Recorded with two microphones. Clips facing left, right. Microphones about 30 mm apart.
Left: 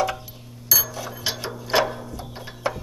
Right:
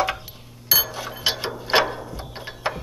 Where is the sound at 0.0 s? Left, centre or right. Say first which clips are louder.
Right 1 dB; right.